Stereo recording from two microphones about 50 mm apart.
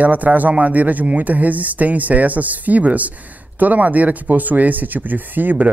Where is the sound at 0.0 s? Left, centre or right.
Right.